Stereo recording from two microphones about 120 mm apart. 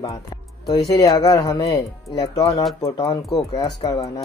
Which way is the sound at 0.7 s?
30° left (ahead or behind).